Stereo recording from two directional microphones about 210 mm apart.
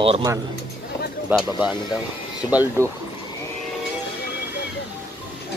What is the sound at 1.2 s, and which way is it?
Speech, 5° right (ahead or behind).